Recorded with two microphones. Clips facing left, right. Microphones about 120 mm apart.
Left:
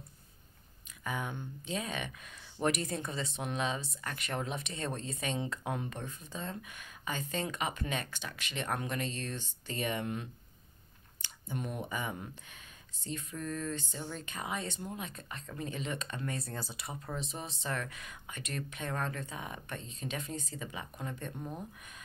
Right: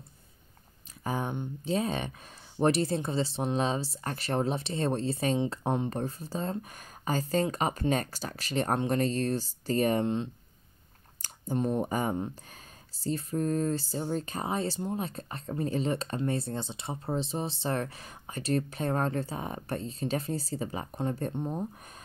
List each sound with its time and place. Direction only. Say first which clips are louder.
1.0 s speech: right 6 dB; 30° right (ahead or behind)
10.0 s speech: right 8 dB; 25° right (ahead or behind)
11.2 s speech: right 10 dB; 40° right (ahead or behind)